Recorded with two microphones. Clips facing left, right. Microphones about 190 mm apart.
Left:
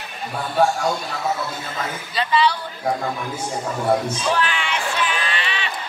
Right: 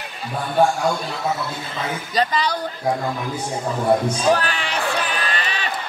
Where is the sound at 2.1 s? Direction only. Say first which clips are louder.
Left 1 dB; 40° right (ahead or behind).